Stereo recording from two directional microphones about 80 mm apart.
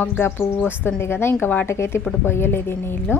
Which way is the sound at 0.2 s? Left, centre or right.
Left.